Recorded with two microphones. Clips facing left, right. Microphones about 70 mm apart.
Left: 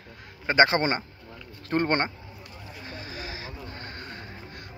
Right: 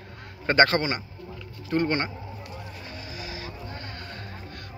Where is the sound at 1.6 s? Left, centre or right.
Left.